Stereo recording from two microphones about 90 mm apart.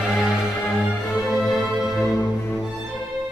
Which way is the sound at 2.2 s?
25° left (ahead or behind).